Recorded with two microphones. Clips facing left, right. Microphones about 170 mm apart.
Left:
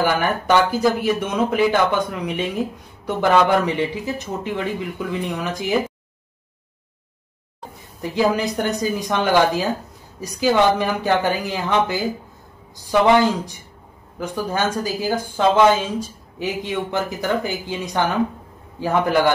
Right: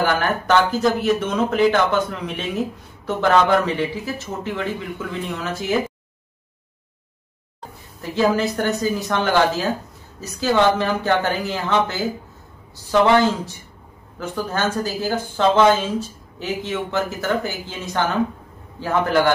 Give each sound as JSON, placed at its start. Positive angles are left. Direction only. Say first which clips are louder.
{"t": 0.0, "sound": "speech", "louder": "left 1 dB", "side_deg": 10}
{"t": 8.0, "sound": "speech", "louder": "even", "side_deg": 15}